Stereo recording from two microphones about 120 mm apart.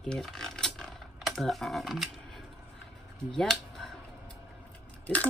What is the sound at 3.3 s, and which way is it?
Speech, 5° left (ahead or behind).